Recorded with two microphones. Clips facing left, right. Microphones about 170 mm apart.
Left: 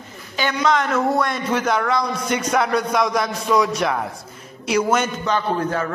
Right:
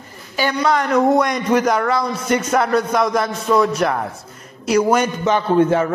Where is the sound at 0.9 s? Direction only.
15° right (ahead or behind).